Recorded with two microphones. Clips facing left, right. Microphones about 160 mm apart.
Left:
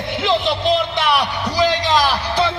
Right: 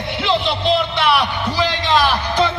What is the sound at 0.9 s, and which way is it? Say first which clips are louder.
A man's voice: right 1 dB; 40° left (ahead or behind).